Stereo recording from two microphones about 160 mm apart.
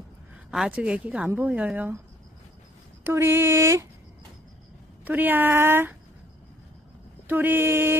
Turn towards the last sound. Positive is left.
turn(degrees=-15)  # may be behind; listen again after turning